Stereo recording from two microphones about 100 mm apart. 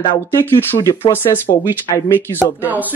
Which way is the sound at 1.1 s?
20° left (ahead or behind).